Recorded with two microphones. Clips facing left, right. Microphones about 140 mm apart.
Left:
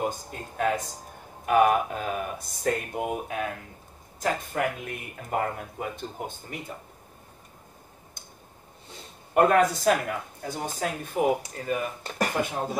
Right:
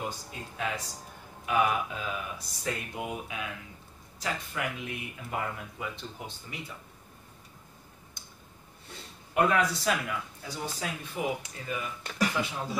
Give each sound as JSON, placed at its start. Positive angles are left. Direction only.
{"t": 0.0, "sound": "speech", "side_deg": 50}
{"t": 9.3, "sound": "speech", "side_deg": 50}